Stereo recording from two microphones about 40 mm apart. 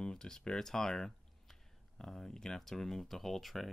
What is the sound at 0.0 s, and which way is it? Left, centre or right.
Speech, centre.